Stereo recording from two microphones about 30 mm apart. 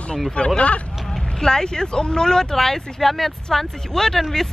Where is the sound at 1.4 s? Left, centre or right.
Left.